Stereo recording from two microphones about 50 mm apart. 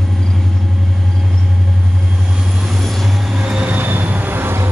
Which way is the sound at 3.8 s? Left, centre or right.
Right.